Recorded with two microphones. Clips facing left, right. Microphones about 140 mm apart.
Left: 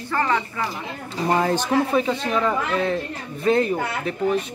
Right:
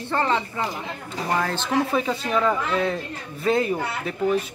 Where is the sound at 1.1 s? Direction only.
25° left (ahead or behind).